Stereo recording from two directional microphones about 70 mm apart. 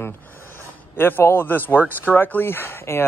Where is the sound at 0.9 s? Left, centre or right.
Left.